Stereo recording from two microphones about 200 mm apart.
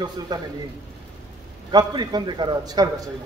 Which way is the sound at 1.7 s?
20° right (ahead or behind).